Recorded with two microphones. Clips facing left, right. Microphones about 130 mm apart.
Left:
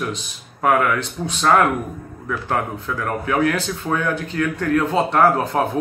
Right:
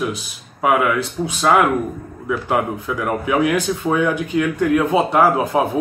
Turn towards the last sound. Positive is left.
turn(degrees=-10)  # may be behind; listen again after turning